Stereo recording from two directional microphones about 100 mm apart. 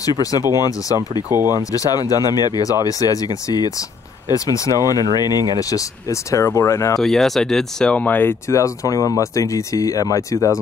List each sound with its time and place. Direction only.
0.0 s speech: 35° left (ahead or behind)
7.0 s speech: 5° left (ahead or behind); by 10.6 s 30° left (ahead or behind)